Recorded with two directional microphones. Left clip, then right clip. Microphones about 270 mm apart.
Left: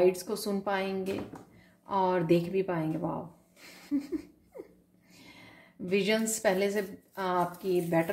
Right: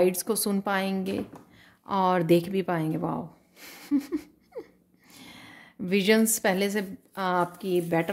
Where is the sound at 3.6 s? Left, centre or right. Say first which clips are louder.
Right 5 dB; right.